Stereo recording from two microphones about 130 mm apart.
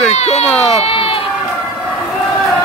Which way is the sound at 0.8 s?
45° left (ahead or behind).